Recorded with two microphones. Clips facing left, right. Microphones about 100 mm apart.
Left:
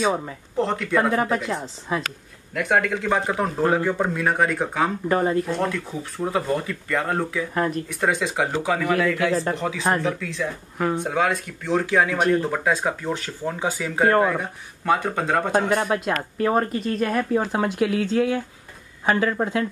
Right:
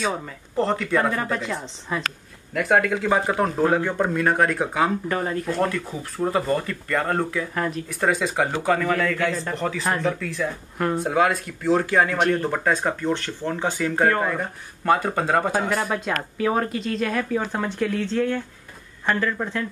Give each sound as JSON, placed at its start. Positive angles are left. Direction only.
{"t": 0.6, "sound": "speech", "side_deg": 0}